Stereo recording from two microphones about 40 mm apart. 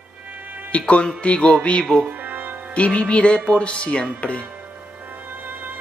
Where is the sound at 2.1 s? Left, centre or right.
Right.